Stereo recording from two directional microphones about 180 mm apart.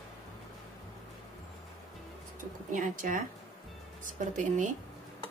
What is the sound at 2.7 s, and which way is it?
Speech, 45° right (ahead or behind).